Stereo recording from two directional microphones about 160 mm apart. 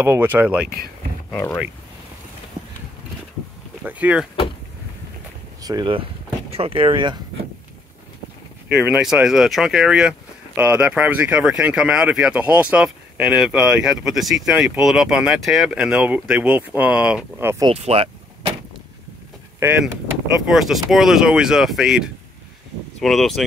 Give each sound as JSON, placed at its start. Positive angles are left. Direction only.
{"t": 0.0, "sound": "speech", "side_deg": -15}
{"t": 1.3, "sound": "speech", "side_deg": 15}
{"t": 3.8, "sound": "speech", "side_deg": -10}
{"t": 5.6, "sound": "speech", "side_deg": -25}
{"t": 8.7, "sound": "speech", "side_deg": -5}
{"t": 17.6, "sound": "speech", "side_deg": -40}
{"t": 19.6, "sound": "speech", "side_deg": -10}